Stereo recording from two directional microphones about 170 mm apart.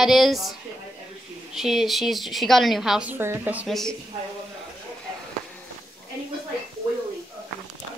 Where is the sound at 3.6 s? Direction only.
Centre (ahead or behind).